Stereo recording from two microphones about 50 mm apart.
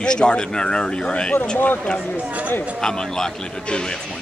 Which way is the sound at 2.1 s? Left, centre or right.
Right.